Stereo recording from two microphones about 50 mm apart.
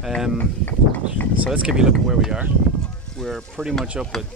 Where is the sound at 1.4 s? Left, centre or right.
Right.